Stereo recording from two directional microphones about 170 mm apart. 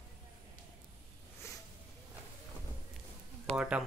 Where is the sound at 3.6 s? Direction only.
5° right (ahead or behind).